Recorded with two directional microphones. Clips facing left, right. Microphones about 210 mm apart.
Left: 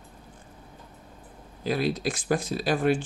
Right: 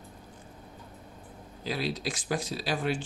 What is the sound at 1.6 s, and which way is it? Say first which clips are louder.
Speech: left 6 dB; 50° left (ahead or behind).